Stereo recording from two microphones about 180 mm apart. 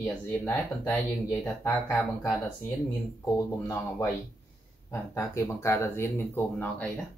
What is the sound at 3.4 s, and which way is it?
Speech, 15° left (ahead or behind).